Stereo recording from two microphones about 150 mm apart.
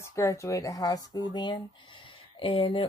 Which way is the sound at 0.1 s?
20° left (ahead or behind).